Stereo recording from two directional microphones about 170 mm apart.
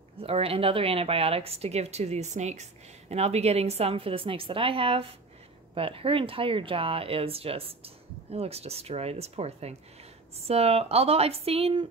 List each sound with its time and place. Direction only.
0.2 s a woman's voice: 35° right (ahead or behind)